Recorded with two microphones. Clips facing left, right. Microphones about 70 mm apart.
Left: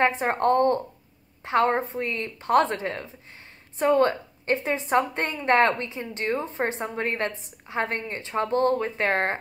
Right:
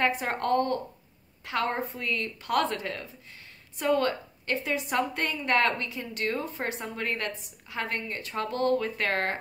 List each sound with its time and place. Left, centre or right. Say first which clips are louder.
0.0 s a woman's voice: left 5 dB; left